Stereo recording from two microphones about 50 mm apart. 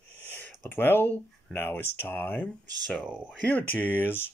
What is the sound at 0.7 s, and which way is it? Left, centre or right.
Speech, left.